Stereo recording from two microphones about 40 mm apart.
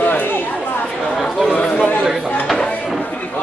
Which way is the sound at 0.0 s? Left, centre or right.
Left.